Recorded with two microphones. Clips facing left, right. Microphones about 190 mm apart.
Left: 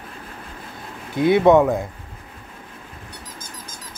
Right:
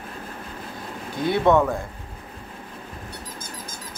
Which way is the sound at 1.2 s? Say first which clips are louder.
Left 5 dB; 20° left (ahead or behind).